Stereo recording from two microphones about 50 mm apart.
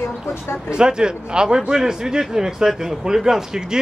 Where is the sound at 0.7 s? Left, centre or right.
Centre.